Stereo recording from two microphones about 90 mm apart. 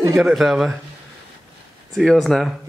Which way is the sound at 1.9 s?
5° left (ahead or behind).